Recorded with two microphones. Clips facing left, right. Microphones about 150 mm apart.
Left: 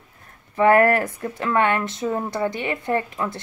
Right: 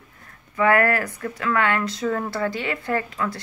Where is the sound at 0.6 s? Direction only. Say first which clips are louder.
Left 3 dB; 30° left (ahead or behind).